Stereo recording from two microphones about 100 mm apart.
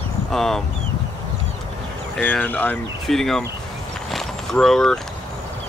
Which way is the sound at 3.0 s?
5° left (ahead or behind).